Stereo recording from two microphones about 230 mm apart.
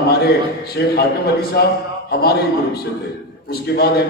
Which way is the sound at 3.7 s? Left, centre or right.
Left.